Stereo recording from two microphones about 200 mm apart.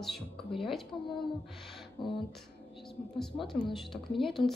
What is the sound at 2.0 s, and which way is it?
Speech, 20° left (ahead or behind).